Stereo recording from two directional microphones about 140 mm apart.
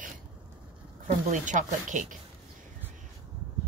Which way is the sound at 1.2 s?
60° right (ahead or behind).